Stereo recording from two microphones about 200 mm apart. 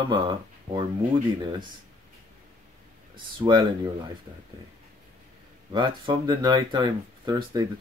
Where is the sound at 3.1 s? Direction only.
20° right (ahead or behind).